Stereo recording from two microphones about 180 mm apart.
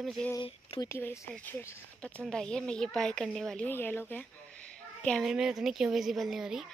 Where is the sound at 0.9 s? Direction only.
10° left (ahead or behind).